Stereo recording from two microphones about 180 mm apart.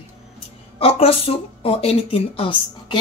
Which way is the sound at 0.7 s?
35° left (ahead or behind).